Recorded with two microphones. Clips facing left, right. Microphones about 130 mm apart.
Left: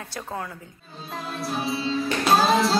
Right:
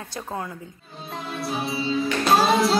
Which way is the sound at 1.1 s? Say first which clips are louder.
Even; centre (ahead or behind).